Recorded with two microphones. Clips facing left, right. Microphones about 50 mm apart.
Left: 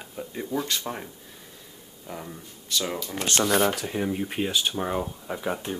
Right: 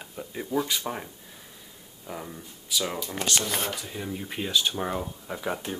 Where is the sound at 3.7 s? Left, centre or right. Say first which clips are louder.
Left 6 dB; left.